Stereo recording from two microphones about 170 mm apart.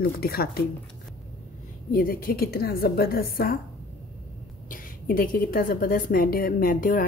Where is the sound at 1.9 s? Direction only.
60° left (ahead or behind).